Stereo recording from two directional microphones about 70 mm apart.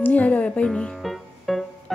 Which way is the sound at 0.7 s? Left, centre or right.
Centre.